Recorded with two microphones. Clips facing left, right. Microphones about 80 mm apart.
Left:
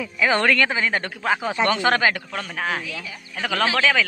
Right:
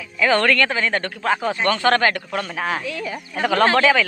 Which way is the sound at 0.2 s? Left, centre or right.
Centre.